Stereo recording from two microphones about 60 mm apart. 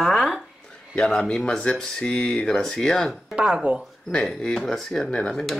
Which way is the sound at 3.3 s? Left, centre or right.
Centre.